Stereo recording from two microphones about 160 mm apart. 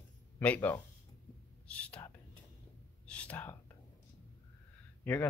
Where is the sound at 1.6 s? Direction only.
10° left (ahead or behind).